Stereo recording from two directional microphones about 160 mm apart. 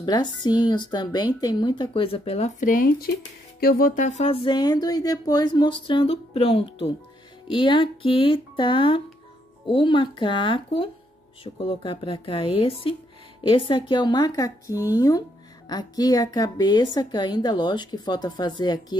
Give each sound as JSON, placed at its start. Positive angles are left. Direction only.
{"t": 0.0, "sound": "a woman's voice", "side_deg": 25}
{"t": 2.6, "sound": "a woman's voice", "side_deg": 60}